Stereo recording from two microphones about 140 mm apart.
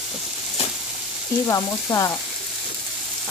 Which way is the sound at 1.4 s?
25° left (ahead or behind).